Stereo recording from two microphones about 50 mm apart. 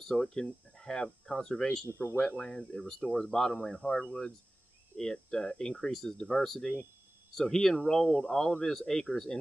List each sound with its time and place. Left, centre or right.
0.1 s speech: centre
1.9 s speech: left
2.3 s speech: centre